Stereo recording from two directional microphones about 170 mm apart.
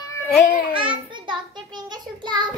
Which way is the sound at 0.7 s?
30° right (ahead or behind).